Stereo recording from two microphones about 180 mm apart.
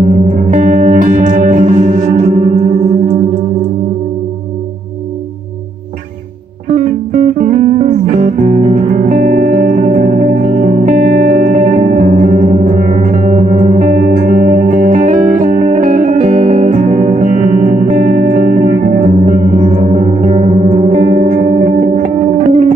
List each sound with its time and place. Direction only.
0.0 s music: 40° right (ahead or behind)
6.7 s music: 45° right (ahead or behind)